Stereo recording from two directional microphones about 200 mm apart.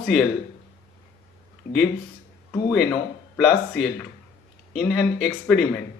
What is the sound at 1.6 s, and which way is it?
Speech, 55° left (ahead or behind).